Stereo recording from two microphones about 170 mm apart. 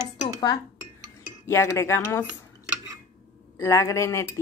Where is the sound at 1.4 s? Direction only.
15° left (ahead or behind).